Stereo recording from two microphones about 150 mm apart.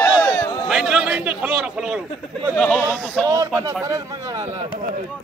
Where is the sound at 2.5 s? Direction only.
5° left (ahead or behind).